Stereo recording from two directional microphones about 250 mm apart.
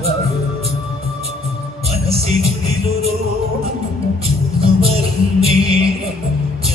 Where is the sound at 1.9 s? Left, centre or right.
Right.